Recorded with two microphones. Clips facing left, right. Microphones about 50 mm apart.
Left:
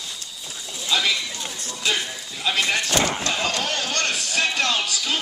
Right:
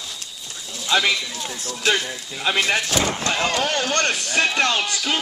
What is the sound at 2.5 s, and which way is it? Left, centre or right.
Speech, centre.